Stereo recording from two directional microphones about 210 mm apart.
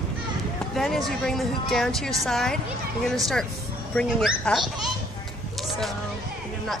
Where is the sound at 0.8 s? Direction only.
Centre (ahead or behind).